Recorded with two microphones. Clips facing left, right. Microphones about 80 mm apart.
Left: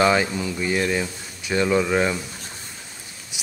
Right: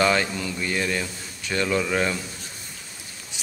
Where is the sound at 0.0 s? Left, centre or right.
Centre.